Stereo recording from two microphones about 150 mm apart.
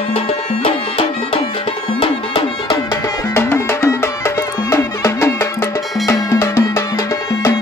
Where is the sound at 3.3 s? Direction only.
20° left (ahead or behind).